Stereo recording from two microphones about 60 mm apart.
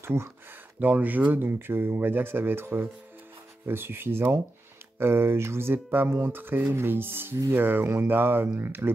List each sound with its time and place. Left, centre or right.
0.0 s speech: right
0.7 s speech: right